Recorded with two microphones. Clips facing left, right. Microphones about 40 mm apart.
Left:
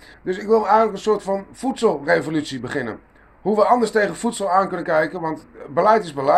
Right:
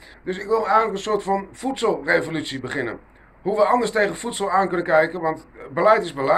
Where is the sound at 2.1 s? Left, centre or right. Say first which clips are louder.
Left 2 dB; centre.